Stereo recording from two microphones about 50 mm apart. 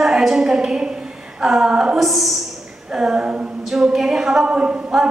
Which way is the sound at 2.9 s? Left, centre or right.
Centre.